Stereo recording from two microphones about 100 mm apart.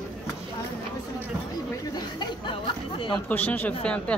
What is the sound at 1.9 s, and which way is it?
Speech, 50° left (ahead or behind).